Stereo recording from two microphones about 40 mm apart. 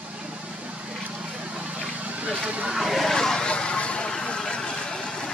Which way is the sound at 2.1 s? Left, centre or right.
Right.